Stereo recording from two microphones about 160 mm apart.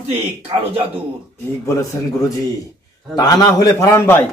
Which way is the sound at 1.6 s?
20° left (ahead or behind).